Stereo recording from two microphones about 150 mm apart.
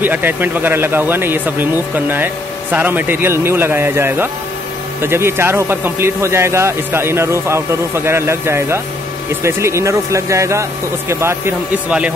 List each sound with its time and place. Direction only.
0.0 s speech: 15° right (ahead or behind)